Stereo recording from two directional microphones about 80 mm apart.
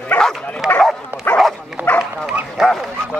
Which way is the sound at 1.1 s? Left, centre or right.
Right.